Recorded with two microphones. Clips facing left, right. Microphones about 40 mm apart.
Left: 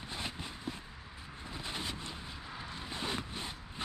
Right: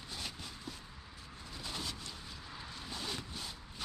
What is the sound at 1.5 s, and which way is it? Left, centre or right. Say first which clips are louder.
Artillery fire: left 2 dB; left.